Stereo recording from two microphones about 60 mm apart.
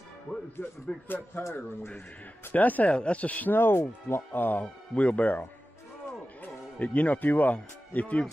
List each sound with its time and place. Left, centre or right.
0.6 s speech: left
2.5 s speech: left
4.9 s speech: left
6.4 s speech: left